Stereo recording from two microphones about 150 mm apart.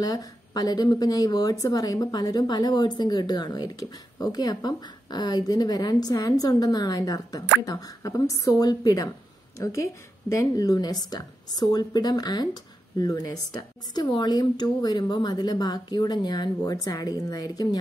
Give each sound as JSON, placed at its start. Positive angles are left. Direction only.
{"t": 0.0, "sound": "speech", "side_deg": 25}